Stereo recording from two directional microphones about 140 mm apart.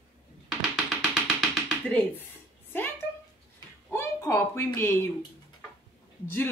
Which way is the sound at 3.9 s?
20° left (ahead or behind).